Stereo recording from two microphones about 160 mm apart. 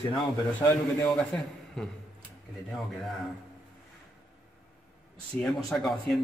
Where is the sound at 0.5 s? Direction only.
10° left (ahead or behind).